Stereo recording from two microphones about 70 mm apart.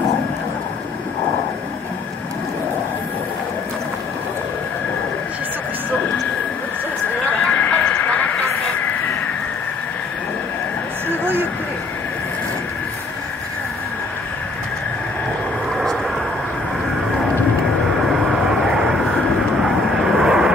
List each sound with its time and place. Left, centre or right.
7.4 s a sound: centre
15.7 s vehicle: centre
19.6 s vehicle: centre